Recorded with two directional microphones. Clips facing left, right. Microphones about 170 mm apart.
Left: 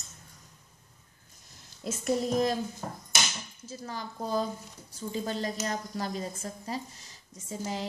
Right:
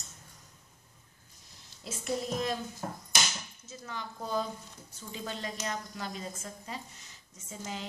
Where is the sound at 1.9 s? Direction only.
40° left (ahead or behind).